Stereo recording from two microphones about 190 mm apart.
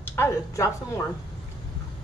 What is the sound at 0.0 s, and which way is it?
Speech, 10° left (ahead or behind).